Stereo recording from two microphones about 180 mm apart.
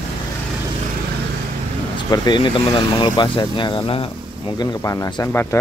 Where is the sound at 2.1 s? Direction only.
25° left (ahead or behind).